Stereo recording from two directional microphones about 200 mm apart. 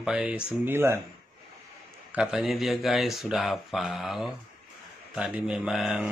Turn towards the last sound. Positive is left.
turn(degrees=0)  # may be behind; listen again after turning